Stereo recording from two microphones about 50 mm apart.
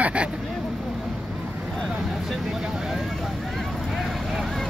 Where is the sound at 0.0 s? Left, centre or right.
Right.